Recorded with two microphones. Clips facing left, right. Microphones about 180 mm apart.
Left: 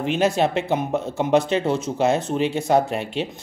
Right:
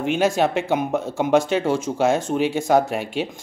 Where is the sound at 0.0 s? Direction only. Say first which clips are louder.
Right 1 dB; 5° right (ahead or behind).